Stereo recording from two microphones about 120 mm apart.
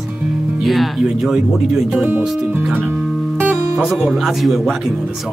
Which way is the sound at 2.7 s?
15° right (ahead or behind).